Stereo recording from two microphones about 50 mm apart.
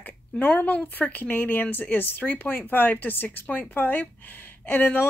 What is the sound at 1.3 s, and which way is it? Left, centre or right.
Speech, left.